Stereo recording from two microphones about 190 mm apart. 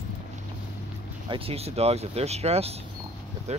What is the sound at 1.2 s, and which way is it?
Speech, 30° right (ahead or behind).